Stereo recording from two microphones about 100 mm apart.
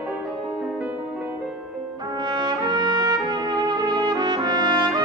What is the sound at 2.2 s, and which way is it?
Trumpet, 45° right (ahead or behind).